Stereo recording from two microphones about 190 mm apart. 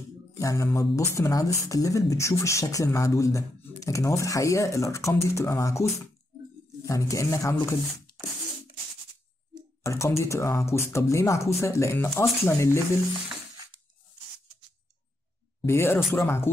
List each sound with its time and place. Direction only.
0.4 s speech: 15° left (ahead or behind)
6.9 s speech: 15° left (ahead or behind)
9.8 s speech: 15° left (ahead or behind)
15.6 s speech: 15° left (ahead or behind)
16.0 s speech: centre (ahead or behind)
16.3 s speech: 10° left (ahead or behind)